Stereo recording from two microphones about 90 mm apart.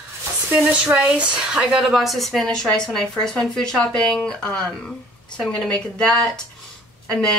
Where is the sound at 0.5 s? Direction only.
15° right (ahead or behind).